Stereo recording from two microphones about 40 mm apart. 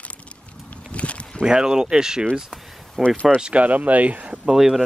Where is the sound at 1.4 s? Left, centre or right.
Centre.